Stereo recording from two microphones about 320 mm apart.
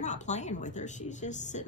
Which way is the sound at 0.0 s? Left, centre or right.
Left.